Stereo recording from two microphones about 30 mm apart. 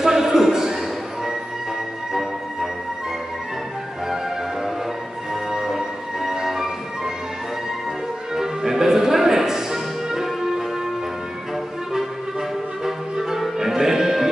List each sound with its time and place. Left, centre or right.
0.0 s music: centre
5.3 s music: centre
8.4 s music: centre
11.9 s music: centre